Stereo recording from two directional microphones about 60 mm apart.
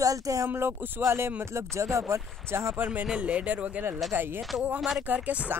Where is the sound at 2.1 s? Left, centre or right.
Right.